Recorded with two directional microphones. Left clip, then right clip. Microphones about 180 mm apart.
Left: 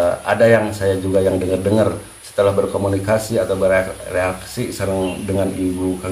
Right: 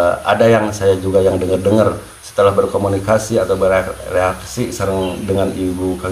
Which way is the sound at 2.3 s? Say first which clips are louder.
Right 3 dB; centre (ahead or behind).